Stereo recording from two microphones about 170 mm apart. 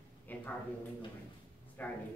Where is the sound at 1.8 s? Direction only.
10° left (ahead or behind).